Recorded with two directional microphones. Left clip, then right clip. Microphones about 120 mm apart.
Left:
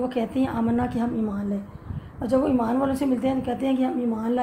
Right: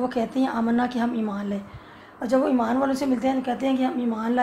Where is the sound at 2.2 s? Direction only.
30° left (ahead or behind).